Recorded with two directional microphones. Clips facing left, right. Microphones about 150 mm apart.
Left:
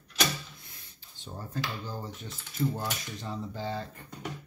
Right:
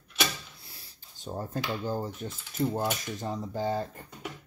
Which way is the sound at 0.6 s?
35° right (ahead or behind).